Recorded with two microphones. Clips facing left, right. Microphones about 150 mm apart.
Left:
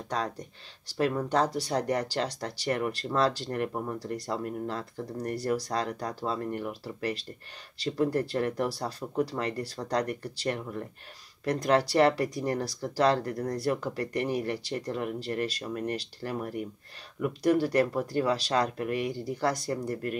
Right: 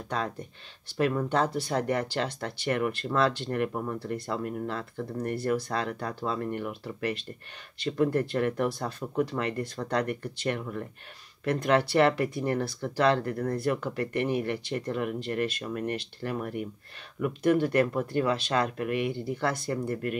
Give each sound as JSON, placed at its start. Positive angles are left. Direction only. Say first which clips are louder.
{"t": 0.1, "sound": "speech", "louder": "even", "side_deg": 35}